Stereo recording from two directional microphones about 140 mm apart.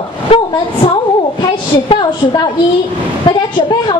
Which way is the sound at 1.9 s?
35° left (ahead or behind).